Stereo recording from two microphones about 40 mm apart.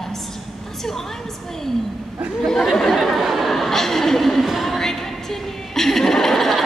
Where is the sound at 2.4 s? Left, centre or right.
Centre.